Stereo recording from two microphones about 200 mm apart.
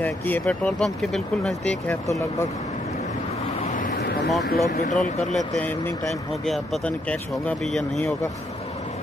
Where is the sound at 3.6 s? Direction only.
40° left (ahead or behind).